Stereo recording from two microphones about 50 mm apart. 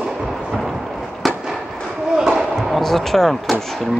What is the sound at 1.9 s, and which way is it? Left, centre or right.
Basketball bounce, centre.